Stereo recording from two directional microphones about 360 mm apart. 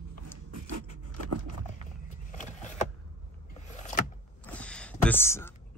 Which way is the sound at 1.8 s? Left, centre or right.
Centre.